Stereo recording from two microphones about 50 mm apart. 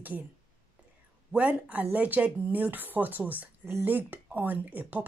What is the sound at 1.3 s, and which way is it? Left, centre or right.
Speech, right.